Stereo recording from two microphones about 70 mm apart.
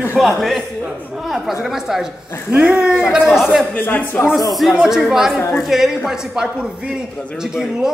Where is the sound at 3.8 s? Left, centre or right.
Left.